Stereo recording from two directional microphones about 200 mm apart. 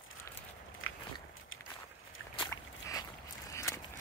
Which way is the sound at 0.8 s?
90° left.